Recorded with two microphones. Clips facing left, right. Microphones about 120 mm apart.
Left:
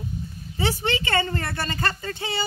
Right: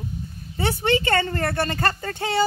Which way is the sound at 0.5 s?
55° right (ahead or behind).